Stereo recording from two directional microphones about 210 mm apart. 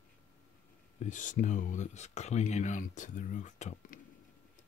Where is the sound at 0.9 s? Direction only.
35° left (ahead or behind).